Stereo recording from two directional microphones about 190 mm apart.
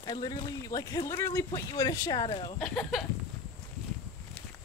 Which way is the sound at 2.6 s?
5° left (ahead or behind).